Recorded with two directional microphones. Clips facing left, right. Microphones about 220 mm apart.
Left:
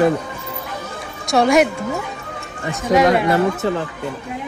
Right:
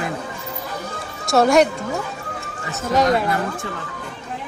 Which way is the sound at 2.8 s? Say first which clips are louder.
Left 3 dB; centre (ahead or behind).